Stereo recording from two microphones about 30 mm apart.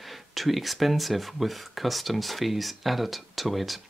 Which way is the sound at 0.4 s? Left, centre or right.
Centre.